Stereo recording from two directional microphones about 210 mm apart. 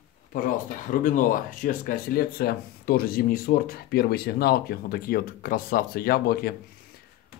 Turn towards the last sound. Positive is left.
turn(degrees=50)  # may be behind; listen again after turning